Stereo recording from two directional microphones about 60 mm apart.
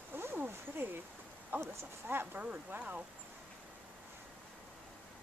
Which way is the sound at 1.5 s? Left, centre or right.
Right.